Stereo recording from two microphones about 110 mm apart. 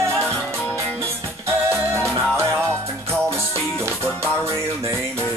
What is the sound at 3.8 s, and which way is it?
Music, 25° right (ahead or behind).